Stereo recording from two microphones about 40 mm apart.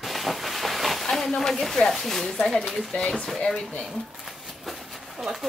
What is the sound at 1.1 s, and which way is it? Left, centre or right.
A woman's voice, centre.